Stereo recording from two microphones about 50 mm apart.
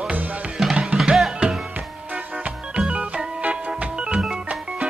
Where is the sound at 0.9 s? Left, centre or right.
Centre.